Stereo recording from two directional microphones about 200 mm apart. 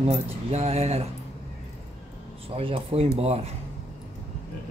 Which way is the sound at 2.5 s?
30° right (ahead or behind).